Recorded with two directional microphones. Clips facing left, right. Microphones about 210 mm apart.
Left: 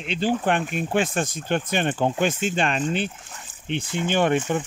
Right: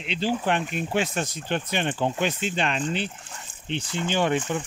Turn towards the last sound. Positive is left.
turn(degrees=50)  # may be behind; listen again after turning